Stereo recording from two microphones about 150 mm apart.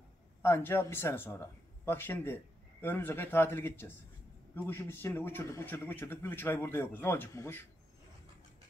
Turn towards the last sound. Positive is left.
turn(degrees=15)  # may be behind; listen again after turning